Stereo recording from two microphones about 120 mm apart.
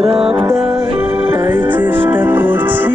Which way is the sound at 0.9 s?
15° right (ahead or behind).